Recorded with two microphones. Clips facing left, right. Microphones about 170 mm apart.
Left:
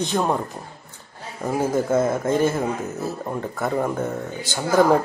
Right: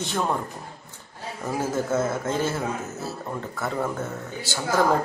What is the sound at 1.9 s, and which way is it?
Speech, 15° left (ahead or behind).